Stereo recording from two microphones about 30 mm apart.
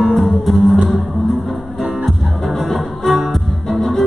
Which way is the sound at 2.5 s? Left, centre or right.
Centre.